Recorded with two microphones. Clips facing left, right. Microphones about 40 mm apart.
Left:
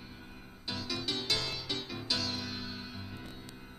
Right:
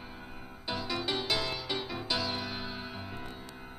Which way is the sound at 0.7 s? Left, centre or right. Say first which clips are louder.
Right 4 dB; centre.